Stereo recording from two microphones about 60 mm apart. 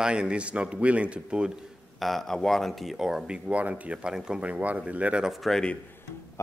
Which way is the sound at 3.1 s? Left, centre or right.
Centre.